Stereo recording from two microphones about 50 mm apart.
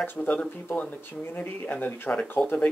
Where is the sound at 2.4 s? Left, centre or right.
Centre.